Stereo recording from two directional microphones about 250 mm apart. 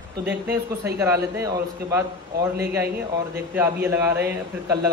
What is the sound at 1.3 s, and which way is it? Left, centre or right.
Speech, centre.